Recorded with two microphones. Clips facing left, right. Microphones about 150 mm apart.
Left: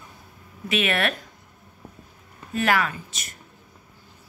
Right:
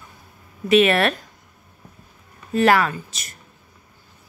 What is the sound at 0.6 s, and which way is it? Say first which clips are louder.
Speech: right 8 dB; 35° right (ahead or behind).